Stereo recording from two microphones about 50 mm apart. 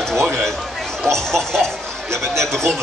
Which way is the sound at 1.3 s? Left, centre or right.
Centre.